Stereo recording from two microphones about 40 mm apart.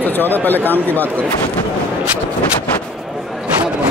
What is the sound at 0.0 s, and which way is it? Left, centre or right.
Speech, left.